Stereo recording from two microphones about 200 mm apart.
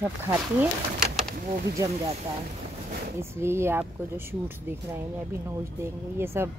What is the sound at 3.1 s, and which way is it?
Speech, 15° right (ahead or behind).